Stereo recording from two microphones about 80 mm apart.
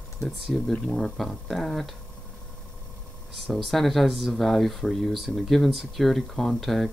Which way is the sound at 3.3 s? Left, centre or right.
Centre.